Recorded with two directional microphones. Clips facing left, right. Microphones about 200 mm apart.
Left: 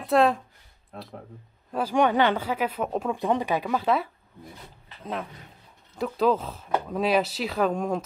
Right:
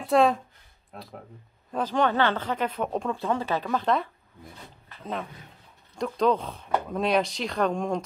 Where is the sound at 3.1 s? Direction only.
15° left (ahead or behind).